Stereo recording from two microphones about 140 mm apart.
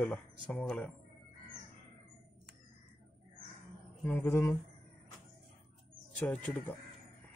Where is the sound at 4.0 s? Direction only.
15° left (ahead or behind).